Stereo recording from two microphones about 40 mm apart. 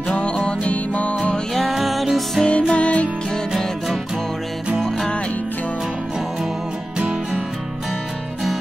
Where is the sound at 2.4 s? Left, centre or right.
Left.